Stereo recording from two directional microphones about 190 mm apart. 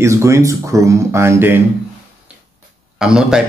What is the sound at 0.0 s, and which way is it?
Speech, 15° right (ahead or behind).